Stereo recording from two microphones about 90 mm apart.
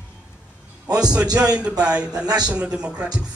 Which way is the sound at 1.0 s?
10° right (ahead or behind).